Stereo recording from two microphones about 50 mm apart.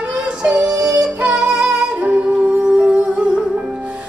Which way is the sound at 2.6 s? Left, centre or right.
Right.